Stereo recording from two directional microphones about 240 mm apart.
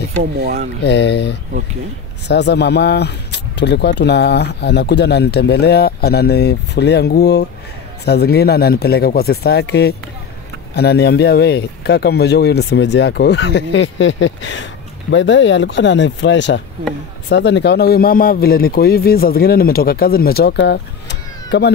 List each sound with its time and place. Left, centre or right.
0.4 s speech: right
0.8 s a man's voice: left